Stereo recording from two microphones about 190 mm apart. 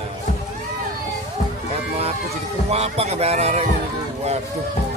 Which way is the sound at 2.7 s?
35° right (ahead or behind).